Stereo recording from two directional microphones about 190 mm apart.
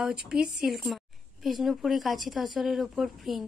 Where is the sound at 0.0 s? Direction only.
5° right (ahead or behind).